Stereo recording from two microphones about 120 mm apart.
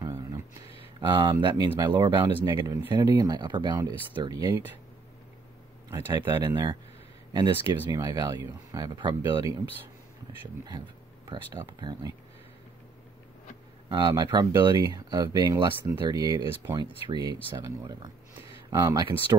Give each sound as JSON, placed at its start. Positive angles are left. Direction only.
{"t": 0.0, "sound": "a sound", "side_deg": -30}
{"t": 1.0, "sound": "speech", "side_deg": -40}
{"t": 6.1, "sound": "speech", "side_deg": -40}
{"t": 11.2, "sound": "speech", "side_deg": -35}
{"t": 13.8, "sound": "speech", "side_deg": -40}